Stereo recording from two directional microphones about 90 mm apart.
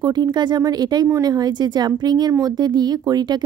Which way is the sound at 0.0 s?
50° right (ahead or behind).